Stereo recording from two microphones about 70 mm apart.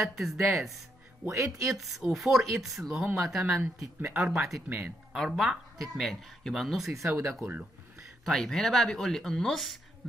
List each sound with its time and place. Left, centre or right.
0.0 s speech: centre
1.3 s speech: right
1.8 s speech: centre
4.6 s speech: right
5.1 s speech: centre
7.1 s speech: right
8.3 s speech: centre